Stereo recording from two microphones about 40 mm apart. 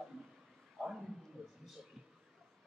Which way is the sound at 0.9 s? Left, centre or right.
Centre.